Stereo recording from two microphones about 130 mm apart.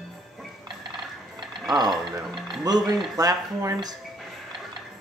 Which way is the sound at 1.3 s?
30° right (ahead or behind).